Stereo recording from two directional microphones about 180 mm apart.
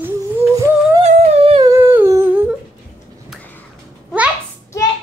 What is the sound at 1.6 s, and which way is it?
Humming, 15° right (ahead or behind).